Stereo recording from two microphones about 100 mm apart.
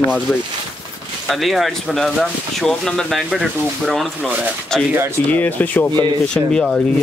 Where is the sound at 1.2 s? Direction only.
Centre (ahead or behind).